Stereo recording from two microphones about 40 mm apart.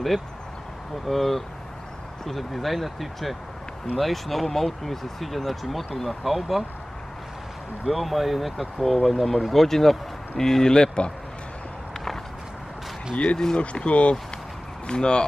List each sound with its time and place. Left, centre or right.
1.0 s speech: centre
7.9 s speech: centre
13.1 s speech: left